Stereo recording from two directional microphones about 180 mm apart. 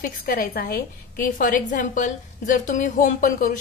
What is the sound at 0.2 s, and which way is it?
A woman's voice, 55° left (ahead or behind).